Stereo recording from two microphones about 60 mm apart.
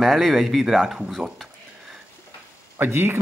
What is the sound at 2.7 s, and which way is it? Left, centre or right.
Speech, right.